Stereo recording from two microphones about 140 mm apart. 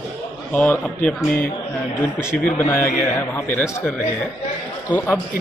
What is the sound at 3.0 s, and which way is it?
A man's voice, 20° left (ahead or behind).